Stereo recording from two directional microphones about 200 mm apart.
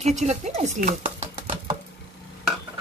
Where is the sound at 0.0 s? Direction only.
35° right (ahead or behind).